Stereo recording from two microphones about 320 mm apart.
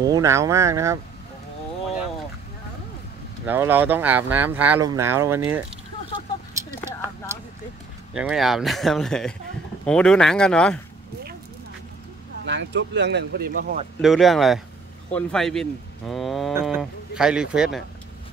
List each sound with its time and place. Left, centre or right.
0.0 s speech: centre
3.4 s speech: centre
8.1 s speech: centre
12.4 s speech: right
14.0 s speech: centre